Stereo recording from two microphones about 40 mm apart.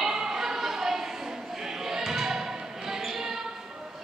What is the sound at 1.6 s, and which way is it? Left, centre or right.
Basketball bounce, centre.